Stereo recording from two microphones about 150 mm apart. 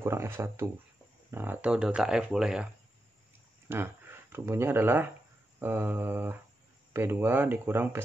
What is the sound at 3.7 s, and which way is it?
Speech, 15° right (ahead or behind).